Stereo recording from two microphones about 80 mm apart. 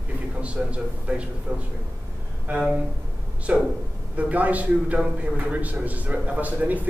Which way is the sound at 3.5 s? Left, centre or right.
Centre.